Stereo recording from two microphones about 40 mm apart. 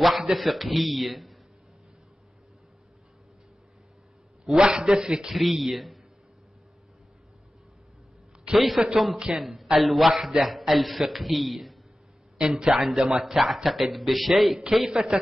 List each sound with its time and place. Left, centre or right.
0.2 s a man's voice: centre
4.5 s a man's voice: centre
5.3 s a man's voice: centre
8.5 s a man's voice: centre
12.4 s a man's voice: centre
13.2 s a man's voice: centre